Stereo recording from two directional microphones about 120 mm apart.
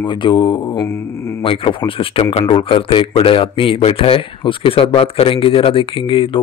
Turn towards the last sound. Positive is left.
turn(degrees=45)  # may be behind; listen again after turning